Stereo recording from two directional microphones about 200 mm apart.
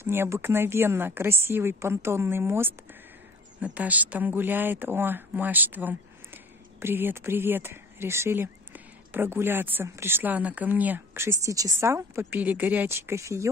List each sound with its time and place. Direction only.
0.0 s speech: 10° right (ahead or behind)